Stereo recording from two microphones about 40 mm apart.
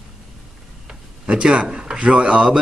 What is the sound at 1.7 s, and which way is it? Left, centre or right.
Speech, centre.